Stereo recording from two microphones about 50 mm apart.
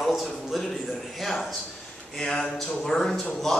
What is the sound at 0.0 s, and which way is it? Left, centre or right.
A man's voice, centre.